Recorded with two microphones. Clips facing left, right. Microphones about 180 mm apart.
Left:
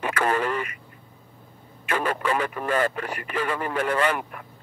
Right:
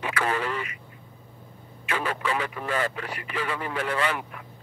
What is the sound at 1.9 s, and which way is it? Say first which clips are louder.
Speech: left 3 dB; 50° left (ahead or behind).